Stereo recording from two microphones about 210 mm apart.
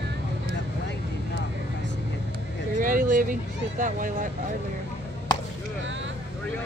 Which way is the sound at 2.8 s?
40° right (ahead or behind).